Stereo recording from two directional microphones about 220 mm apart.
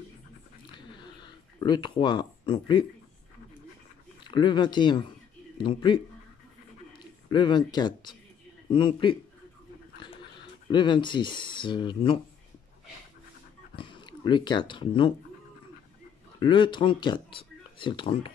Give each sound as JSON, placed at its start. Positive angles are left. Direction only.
{"t": 0.7, "sound": "a sound", "side_deg": 20}
{"t": 4.2, "sound": "speech", "side_deg": 20}
{"t": 10.0, "sound": "a sound", "side_deg": 20}
{"t": 10.7, "sound": "speech", "side_deg": 20}
{"t": 13.7, "sound": "speech", "side_deg": 20}
{"t": 16.3, "sound": "speech", "side_deg": 20}